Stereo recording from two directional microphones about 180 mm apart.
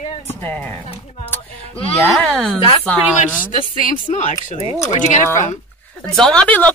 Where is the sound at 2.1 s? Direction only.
5° left (ahead or behind).